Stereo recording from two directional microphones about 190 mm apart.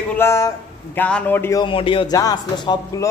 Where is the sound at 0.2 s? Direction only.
15° left (ahead or behind).